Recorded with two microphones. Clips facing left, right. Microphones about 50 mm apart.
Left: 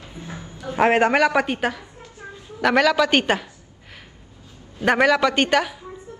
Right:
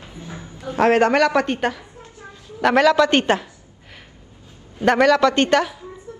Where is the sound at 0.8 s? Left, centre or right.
Centre.